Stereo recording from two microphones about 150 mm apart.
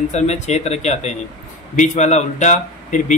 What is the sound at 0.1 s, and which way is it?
A man's voice, 50° left (ahead or behind).